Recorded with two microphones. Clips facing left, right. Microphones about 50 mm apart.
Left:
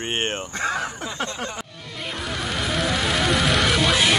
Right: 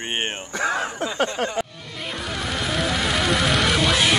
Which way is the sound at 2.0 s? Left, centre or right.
Centre.